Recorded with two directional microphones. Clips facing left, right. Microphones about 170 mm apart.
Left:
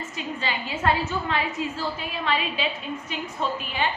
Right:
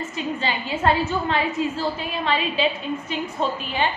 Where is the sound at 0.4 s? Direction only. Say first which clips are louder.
Right 2 dB; 30° right (ahead or behind).